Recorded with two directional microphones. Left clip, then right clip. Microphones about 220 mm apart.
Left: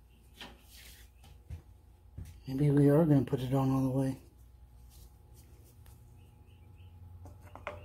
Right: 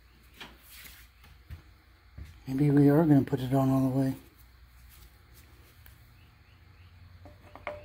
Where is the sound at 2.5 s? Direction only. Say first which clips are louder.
Right 3 dB; 25° right (ahead or behind).